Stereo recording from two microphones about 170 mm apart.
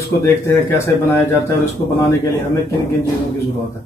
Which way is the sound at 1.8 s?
25° left (ahead or behind).